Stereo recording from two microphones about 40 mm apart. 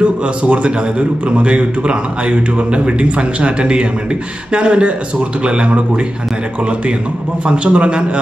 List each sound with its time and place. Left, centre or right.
0.0 s a man's voice: right
7.4 s a man's voice: right